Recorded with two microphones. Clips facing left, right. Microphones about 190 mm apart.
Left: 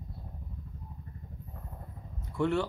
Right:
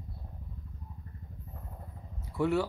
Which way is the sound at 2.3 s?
5° right (ahead or behind).